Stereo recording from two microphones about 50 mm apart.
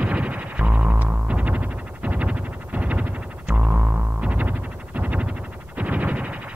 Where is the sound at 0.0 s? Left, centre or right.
Right.